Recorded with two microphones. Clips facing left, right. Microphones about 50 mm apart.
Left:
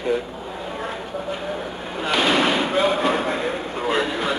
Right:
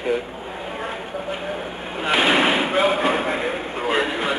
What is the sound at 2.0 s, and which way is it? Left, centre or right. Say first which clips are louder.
Slam: right 1 dB; right.